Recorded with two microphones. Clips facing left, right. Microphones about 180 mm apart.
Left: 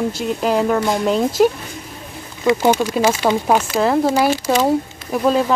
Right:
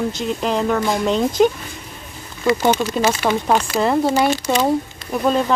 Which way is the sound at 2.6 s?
10° left (ahead or behind).